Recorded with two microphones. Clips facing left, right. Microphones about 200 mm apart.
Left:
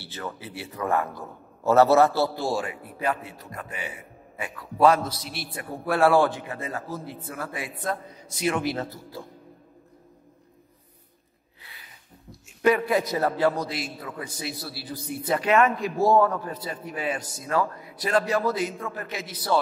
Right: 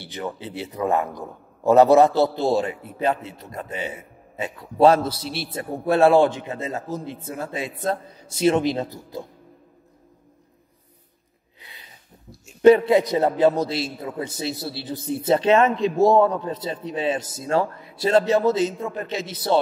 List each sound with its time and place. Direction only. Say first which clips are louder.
0.0 s a man's voice: right 5 dB; 20° right (ahead or behind)
11.6 s a sound: right 3 dB; 15° right (ahead or behind)
12.6 s a man's voice: right 8 dB; 25° right (ahead or behind)